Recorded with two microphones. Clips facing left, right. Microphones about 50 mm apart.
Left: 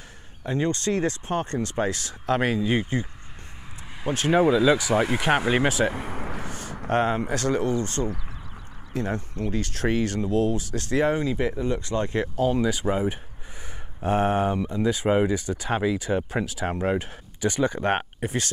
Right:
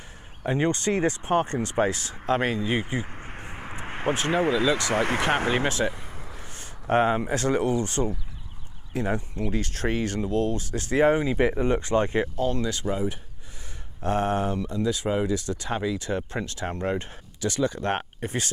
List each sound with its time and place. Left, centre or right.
0.5 s speech: right; by 2.8 s centre
2.8 s speech: centre
3.6 s vehicle: right
4.4 s speech: right
5.9 s vehicle: left
6.9 s speech: centre
10.7 s speech: centre
12.4 s speech: centre
12.8 s speech: left; by 17.1 s centre
17.4 s speech: left
18.2 s speech: centre